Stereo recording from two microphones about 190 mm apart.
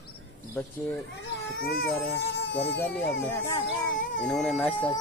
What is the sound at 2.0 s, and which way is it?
Speech, 60° left (ahead or behind).